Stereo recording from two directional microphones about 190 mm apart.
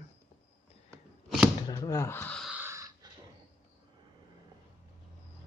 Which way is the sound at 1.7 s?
15° left (ahead or behind).